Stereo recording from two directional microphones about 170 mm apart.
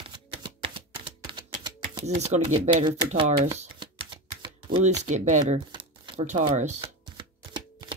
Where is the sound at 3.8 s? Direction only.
30° right (ahead or behind).